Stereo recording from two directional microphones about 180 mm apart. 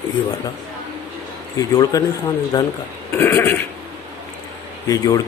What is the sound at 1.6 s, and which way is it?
Speech, 20° left (ahead or behind).